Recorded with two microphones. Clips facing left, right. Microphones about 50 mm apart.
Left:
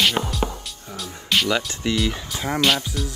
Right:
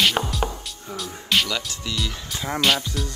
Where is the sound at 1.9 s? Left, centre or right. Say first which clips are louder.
Left 8 dB; left.